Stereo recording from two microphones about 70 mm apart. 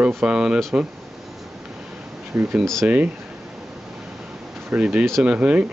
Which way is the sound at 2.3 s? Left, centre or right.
Right.